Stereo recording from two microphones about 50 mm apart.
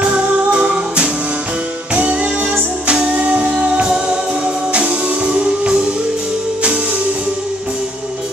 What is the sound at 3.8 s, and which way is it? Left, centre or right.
Music, centre.